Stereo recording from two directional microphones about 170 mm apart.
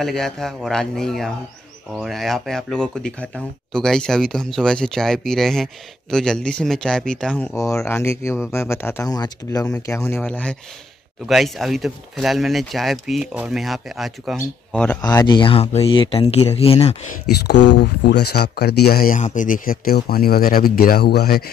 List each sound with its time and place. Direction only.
0.0 s speech: 5° left (ahead or behind)
7.5 s speech: 15° left (ahead or behind)
15.0 s speech: 25° left (ahead or behind)
17.3 s speech: 75° left (ahead or behind)